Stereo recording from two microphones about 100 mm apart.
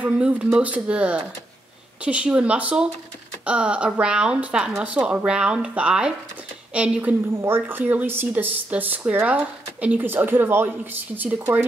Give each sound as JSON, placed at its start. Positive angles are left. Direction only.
{"t": 0.0, "sound": "speech", "side_deg": -15}